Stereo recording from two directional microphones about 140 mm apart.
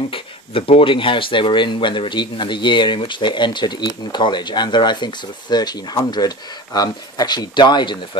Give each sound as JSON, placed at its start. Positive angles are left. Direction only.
{"t": 0.1, "sound": "speech", "side_deg": 40}